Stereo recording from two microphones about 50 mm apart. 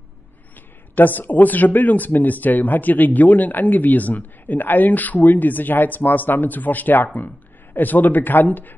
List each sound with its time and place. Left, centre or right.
0.6 s speech: left